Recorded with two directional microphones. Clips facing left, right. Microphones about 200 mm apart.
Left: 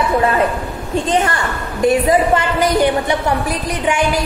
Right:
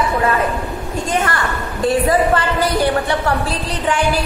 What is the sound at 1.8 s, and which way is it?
A woman's voice, 20° left (ahead or behind).